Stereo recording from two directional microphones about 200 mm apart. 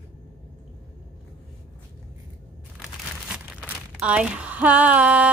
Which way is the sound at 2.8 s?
5° right (ahead or behind).